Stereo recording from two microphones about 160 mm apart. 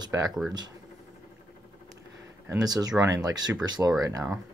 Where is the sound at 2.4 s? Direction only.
25° right (ahead or behind).